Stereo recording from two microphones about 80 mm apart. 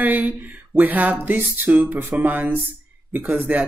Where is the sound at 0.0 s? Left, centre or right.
Right.